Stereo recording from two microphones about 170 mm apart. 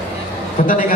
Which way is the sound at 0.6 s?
60° left (ahead or behind).